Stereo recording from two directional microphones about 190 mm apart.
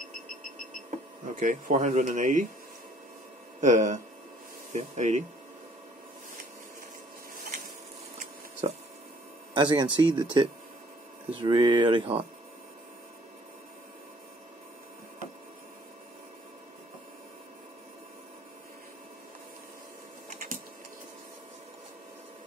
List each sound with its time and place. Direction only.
0.8 s speech: 40° right (ahead or behind)
3.6 s speech: 40° right (ahead or behind)
8.2 s a sound: 40° right (ahead or behind)
9.5 s speech: 25° right (ahead or behind)
11.2 s speech: 25° right (ahead or behind)
20.2 s typing: 45° right (ahead or behind)